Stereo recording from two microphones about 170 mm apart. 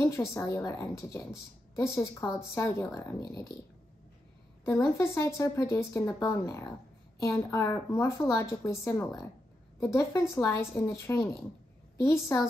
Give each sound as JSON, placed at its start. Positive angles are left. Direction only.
{"t": 0.3, "sound": "a woman's voice", "side_deg": 15}
{"t": 4.6, "sound": "a woman's voice", "side_deg": 15}